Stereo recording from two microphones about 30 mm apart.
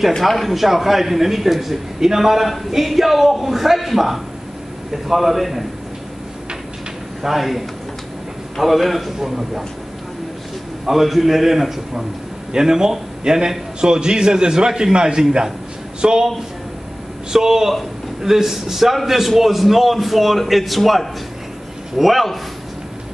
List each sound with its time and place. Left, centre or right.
0.5 s a man's voice: centre
7.2 s a man's voice: centre
10.9 s a man's voice: centre; by 16.3 s right
17.3 s a man's voice: centre